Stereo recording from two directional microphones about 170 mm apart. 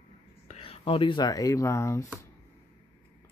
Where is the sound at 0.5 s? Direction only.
35° left (ahead or behind); by 2.0 s 15° left (ahead or behind).